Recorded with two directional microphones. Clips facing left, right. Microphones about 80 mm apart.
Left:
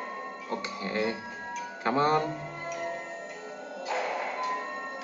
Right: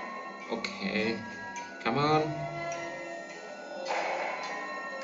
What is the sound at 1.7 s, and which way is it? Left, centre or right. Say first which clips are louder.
Music: left 2 dB; left.